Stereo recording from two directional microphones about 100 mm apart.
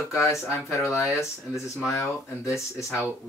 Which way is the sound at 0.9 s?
30° left (ahead or behind).